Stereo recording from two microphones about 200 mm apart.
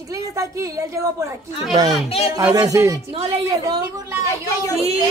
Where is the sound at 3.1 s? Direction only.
30° right (ahead or behind).